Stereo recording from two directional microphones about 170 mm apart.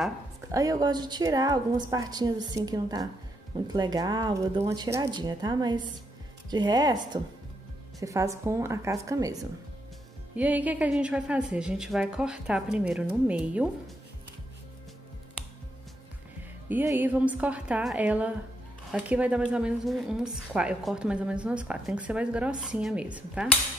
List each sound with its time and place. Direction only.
0.5 s a woman's voice: 20° right (ahead or behind)
10.3 s a woman's voice: 10° right (ahead or behind)
16.6 s a woman's voice: 10° right (ahead or behind)